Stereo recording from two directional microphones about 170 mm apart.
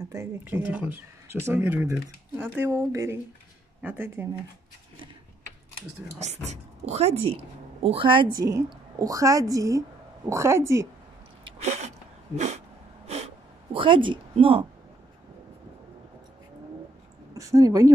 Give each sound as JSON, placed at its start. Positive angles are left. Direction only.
{"t": 0.1, "sound": "speech", "side_deg": -15}
{"t": 6.1, "sound": "a woman's voice", "side_deg": -40}
{"t": 11.6, "sound": "sneeze", "side_deg": -45}
{"t": 12.4, "sound": "a sound", "side_deg": -40}
{"t": 13.7, "sound": "a woman's voice", "side_deg": -30}
{"t": 17.3, "sound": "speech", "side_deg": -20}